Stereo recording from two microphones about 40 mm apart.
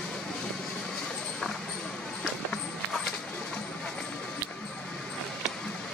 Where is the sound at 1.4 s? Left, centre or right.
Centre.